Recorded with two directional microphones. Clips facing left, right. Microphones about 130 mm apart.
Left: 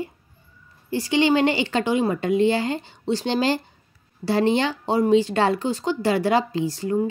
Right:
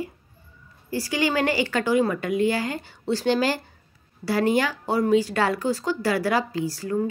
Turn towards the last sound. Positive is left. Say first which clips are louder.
# left 3 dB
turn(degrees=25)  # may be behind; listen again after turning